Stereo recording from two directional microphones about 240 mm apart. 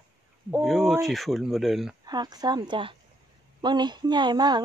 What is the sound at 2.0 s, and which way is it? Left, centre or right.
A woman's voice, centre.